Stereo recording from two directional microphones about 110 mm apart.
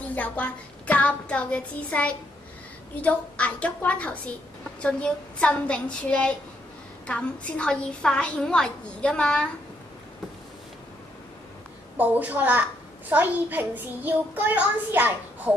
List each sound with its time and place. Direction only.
0.1 s a woman's voice: 15° left (ahead or behind)
12.0 s a child's voice: 15° right (ahead or behind)